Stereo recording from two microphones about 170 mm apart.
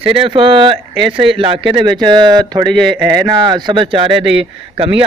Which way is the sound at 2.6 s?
Centre (ahead or behind).